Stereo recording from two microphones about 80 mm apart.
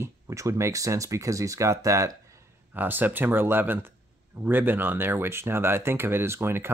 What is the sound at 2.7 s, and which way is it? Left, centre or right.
Speech, right.